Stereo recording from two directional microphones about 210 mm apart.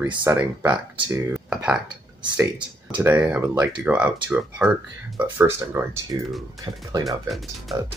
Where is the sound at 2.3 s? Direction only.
20° right (ahead or behind).